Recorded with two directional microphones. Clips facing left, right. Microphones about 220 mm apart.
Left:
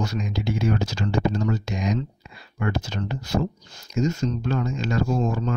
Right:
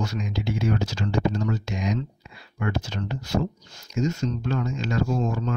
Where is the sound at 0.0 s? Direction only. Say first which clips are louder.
Left 2 dB; 40° left (ahead or behind).